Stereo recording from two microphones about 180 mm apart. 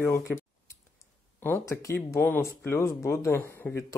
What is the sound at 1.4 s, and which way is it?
Speech, 15° left (ahead or behind).